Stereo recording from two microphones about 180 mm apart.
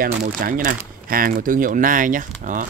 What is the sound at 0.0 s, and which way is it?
Speech, 50° right (ahead or behind).